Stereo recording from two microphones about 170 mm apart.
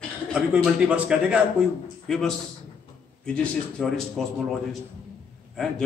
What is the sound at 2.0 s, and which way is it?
Speech, 5° left (ahead or behind).